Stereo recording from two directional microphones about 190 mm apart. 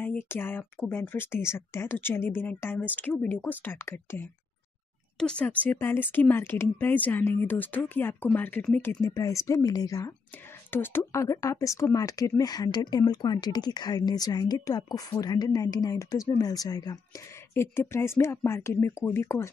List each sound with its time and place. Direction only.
0.0 s speech: 10° left (ahead or behind)
5.2 s speech: 5° left (ahead or behind)